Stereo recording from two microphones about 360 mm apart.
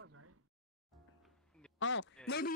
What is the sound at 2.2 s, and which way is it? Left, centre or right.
Speech, left.